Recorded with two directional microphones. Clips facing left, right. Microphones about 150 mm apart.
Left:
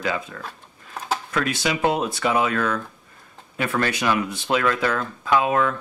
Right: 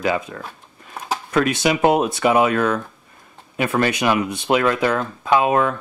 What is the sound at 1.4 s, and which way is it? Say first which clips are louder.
Speech: right 6 dB; 20° right (ahead or behind).